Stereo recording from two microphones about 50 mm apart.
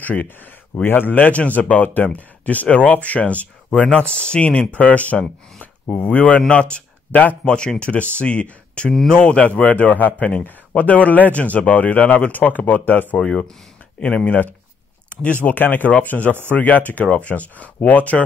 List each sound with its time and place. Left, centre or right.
0.0 s speech: left
0.8 s speech: left
7.4 s speech: centre; by 13.2 s left
13.9 s speech: left
15.4 s speech: left